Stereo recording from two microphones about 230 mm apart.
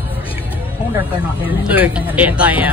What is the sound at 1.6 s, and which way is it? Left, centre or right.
Speech, centre.